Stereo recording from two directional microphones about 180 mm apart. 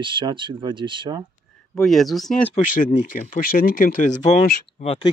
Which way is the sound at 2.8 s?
45° left (ahead or behind).